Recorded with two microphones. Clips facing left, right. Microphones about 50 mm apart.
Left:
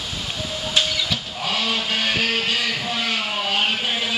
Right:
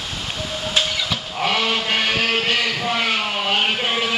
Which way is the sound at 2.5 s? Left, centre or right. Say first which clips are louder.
Right 3 dB; right.